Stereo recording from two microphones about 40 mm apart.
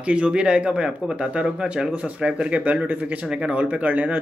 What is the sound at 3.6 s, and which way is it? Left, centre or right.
Speech, right.